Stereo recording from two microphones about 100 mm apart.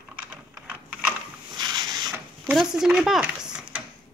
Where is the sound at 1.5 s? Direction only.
45° right (ahead or behind).